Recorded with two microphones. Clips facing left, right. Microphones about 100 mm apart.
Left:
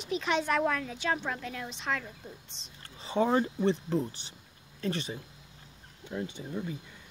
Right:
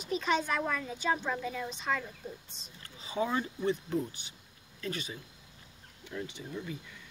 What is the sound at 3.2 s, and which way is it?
Speech, 35° left (ahead or behind).